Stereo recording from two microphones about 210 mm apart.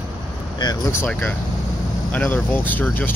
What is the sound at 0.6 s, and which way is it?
Speech, 20° left (ahead or behind).